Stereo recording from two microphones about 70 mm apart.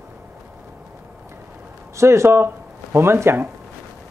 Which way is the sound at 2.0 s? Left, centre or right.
Right.